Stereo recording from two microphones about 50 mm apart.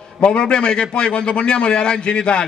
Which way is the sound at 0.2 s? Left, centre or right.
Centre.